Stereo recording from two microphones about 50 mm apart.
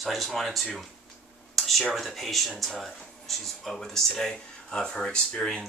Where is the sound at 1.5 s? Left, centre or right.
Centre.